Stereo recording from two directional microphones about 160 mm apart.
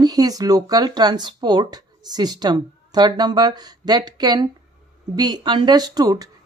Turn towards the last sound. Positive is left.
turn(degrees=-25)  # may be behind; listen again after turning